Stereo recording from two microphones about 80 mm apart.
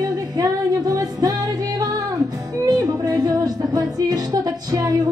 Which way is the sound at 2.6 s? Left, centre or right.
Right.